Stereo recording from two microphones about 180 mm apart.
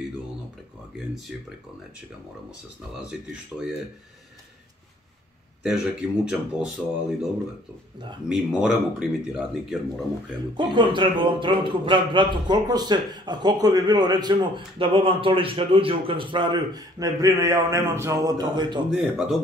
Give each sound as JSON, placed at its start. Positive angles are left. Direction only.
{"t": 3.1, "sound": "speech", "side_deg": -5}
{"t": 5.6, "sound": "speech", "side_deg": -5}
{"t": 8.3, "sound": "speech", "side_deg": 0}
{"t": 10.5, "sound": "speech", "side_deg": -25}
{"t": 18.9, "sound": "speech", "side_deg": -5}